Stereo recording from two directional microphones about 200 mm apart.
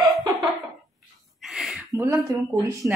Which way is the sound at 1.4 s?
5° right (ahead or behind).